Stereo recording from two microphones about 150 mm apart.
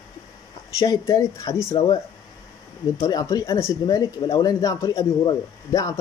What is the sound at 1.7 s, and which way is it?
Speech, 30° left (ahead or behind).